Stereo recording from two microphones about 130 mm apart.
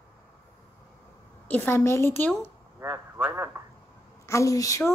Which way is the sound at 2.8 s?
20° right (ahead or behind).